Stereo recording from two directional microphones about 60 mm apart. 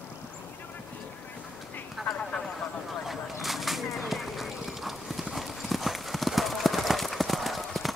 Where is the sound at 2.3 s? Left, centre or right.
Centre.